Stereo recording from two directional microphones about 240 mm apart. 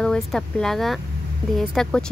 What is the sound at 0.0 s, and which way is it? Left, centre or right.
Speech, centre.